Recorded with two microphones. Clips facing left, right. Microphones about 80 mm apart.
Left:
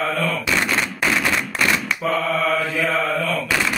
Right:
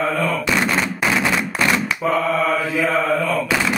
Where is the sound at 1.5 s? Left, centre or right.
Centre.